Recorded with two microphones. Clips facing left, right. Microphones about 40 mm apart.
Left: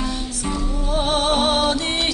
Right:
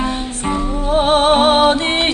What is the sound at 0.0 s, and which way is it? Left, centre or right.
Music, right.